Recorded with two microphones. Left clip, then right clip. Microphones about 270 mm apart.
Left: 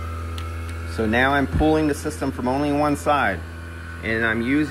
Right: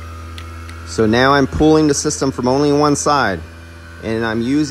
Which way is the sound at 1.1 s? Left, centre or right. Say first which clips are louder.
Right 6 dB; right.